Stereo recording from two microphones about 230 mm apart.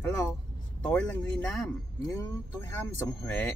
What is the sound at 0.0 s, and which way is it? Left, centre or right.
Vehicle, centre.